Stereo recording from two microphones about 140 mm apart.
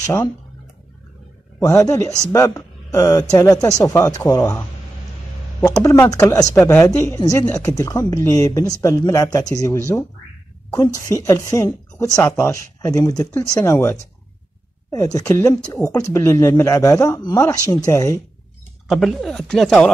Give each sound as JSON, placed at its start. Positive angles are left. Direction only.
{"t": 0.0, "sound": "speech", "side_deg": 20}
{"t": 1.6, "sound": "a woman's voice", "side_deg": 25}
{"t": 15.1, "sound": "speech", "side_deg": 20}
{"t": 18.9, "sound": "speech", "side_deg": 0}